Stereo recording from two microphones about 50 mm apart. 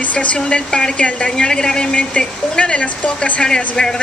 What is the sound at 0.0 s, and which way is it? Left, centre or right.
A woman's voice, left.